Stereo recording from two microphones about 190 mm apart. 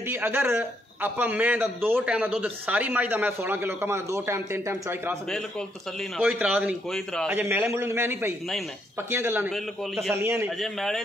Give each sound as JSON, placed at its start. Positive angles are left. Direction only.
{"t": 0.1, "sound": "a man's voice", "side_deg": -10}
{"t": 6.2, "sound": "a man's voice", "side_deg": -10}
{"t": 10.3, "sound": "a man's voice", "side_deg": 0}